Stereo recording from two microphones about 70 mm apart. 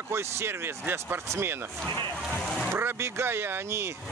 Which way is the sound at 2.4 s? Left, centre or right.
Centre.